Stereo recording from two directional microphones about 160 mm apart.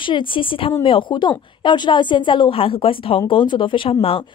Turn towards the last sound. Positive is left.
turn(degrees=35)  # may be behind; listen again after turning